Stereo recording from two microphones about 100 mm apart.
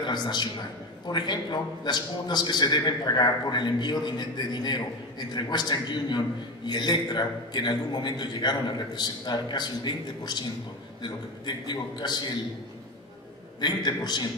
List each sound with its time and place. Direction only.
0.0 s a man's voice: 45° left (ahead or behind)
13.6 s a man's voice: 45° left (ahead or behind)